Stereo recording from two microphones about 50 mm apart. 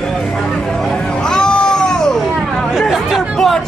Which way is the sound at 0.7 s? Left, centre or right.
Centre.